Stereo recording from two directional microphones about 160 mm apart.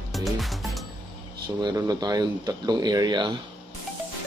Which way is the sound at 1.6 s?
25° right (ahead or behind).